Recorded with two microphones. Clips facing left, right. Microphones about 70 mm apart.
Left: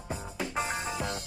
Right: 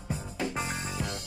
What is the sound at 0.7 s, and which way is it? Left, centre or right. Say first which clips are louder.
Music: left 2 dB; centre.